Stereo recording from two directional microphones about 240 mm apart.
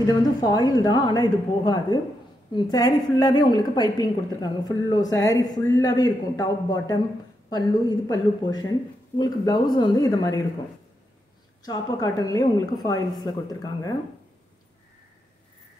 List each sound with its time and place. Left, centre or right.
0.0 s a woman's voice: centre
11.6 s a woman's voice: centre